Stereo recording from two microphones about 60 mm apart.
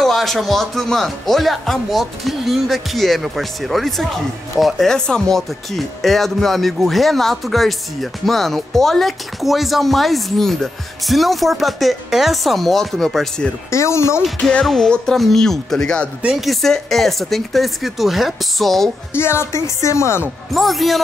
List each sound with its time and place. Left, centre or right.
0.0 s speech: centre
4.8 s speech: centre
13.7 s speech: left
14.5 s speech: centre
16.3 s speech: centre
19.1 s speech: left
20.5 s speech: centre